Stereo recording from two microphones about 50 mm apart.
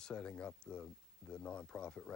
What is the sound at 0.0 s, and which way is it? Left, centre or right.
Speech, centre.